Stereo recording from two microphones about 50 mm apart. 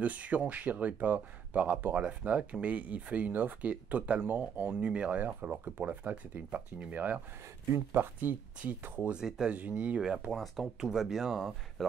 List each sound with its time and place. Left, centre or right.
0.0 s speech: right
5.2 s speech: right
9.1 s speech: centre
9.5 s speech: right
9.9 s speech: centre
10.3 s speech: centre